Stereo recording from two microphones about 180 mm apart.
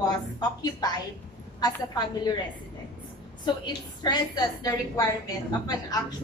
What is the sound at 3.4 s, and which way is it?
A woman's voice, 25° left (ahead or behind).